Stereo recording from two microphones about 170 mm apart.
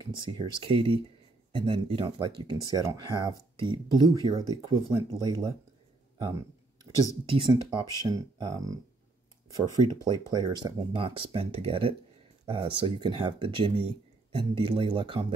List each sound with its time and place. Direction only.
0.0 s speech: 30° right (ahead or behind)
6.1 s a sound: 25° right (ahead or behind)
7.2 s speech: 30° right (ahead or behind)
10.0 s speech: 25° right (ahead or behind)